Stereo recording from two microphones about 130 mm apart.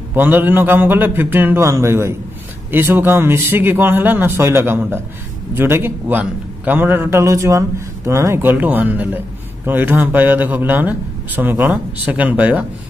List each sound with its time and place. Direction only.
0.1 s a man's voice: 15° right (ahead or behind)